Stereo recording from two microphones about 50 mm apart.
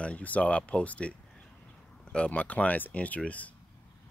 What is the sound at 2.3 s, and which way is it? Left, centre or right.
Speech, left.